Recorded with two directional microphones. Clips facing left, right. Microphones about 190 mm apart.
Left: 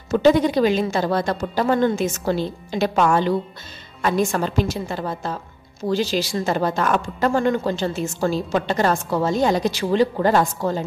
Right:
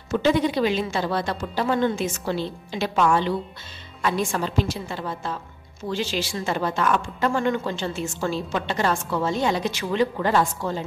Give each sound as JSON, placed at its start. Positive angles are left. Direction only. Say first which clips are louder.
{"t": 0.1, "sound": "a woman's voice", "louder": "left 5 dB", "side_deg": 45}